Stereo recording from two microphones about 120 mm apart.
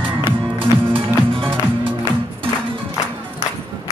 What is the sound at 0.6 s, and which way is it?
Music, 50° right (ahead or behind).